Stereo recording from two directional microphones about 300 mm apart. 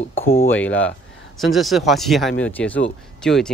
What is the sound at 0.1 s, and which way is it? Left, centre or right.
Speech, centre.